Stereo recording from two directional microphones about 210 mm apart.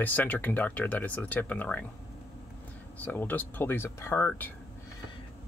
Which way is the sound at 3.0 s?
10° left (ahead or behind).